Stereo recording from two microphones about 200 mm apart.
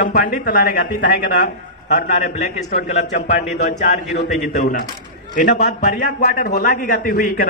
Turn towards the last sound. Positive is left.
turn(degrees=45)  # may be behind; listen again after turning